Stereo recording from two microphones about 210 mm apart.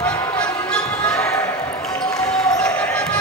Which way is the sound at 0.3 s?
5° left (ahead or behind).